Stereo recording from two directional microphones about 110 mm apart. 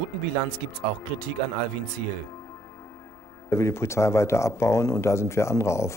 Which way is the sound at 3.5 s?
25° left (ahead or behind).